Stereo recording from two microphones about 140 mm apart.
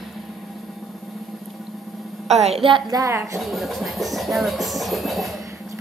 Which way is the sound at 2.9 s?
25° right (ahead or behind).